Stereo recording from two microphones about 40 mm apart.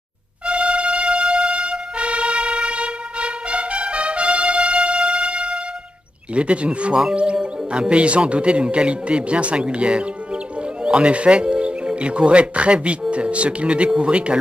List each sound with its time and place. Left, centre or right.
0.5 s music: right
6.3 s speech: right